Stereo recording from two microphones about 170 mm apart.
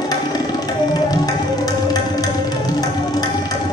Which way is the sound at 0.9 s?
25° left (ahead or behind).